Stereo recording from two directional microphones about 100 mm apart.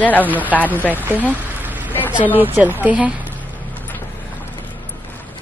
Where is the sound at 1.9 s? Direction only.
20° left (ahead or behind).